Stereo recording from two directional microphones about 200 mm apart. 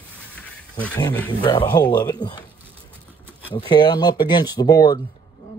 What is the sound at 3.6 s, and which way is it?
Speech, 20° left (ahead or behind).